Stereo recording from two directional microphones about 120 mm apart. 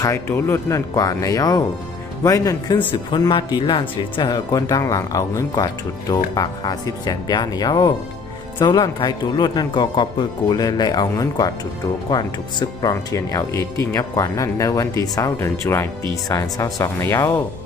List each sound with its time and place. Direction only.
0.0 s speech: 25° left (ahead or behind)
2.9 s speech: 45° left (ahead or behind)
17.0 s speech: 20° left (ahead or behind)